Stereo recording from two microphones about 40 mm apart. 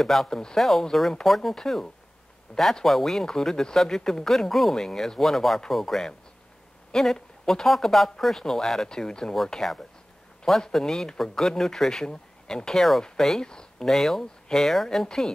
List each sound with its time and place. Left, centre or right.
0.0 s speech: centre
8.8 s speech: centre
9.3 s speech: centre
13.4 s speech: centre
13.8 s speech: centre
15.0 s speech: centre